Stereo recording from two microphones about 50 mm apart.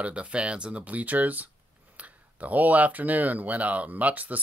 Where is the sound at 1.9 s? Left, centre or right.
Right.